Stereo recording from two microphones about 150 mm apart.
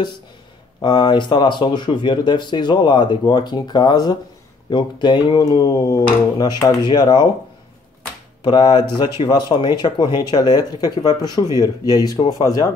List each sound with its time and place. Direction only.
0.7 s speech: 30° left (ahead or behind)
8.5 s speech: 30° left (ahead or behind)